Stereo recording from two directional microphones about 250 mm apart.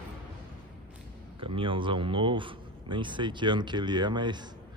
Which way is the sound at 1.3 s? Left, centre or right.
Right.